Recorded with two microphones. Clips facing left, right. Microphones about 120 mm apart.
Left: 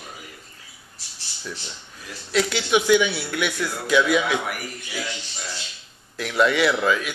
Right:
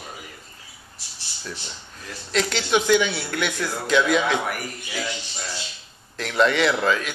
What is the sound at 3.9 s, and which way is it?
A man's voice, 10° left (ahead or behind).